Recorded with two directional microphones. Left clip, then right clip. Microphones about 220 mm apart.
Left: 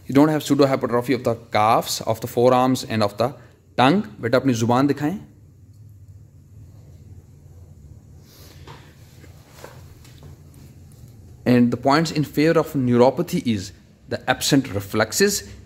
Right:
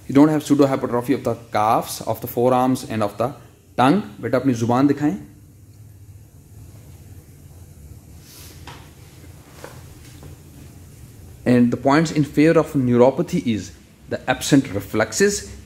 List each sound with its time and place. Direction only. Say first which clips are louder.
0.1 s a man's voice: right 2 dB; 15° left (ahead or behind)
11.4 s a man's voice: right 1 dB; 10° left (ahead or behind)